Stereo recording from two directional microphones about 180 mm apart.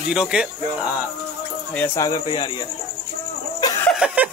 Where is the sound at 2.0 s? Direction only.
20° left (ahead or behind).